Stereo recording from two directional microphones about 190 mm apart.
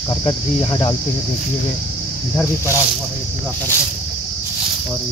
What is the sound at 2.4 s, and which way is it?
Speech, 15° left (ahead or behind).